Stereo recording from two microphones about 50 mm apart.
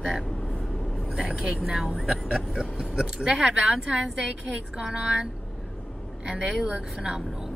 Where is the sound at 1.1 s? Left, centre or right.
Centre.